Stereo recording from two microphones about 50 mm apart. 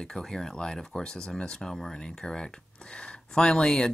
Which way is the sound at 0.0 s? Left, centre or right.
Centre.